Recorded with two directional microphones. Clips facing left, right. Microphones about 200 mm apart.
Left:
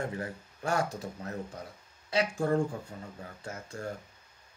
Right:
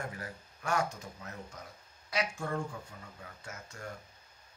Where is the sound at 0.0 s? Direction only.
30° left (ahead or behind).